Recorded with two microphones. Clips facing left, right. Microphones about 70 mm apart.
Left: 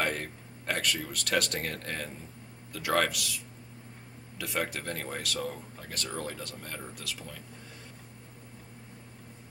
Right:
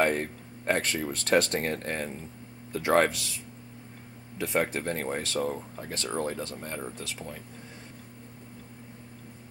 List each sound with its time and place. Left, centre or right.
0.0 s speech: right
4.4 s speech: right